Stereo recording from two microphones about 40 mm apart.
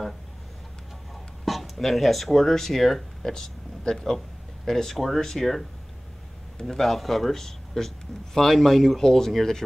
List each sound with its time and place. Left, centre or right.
1.4 s speech: centre
4.9 s speech: centre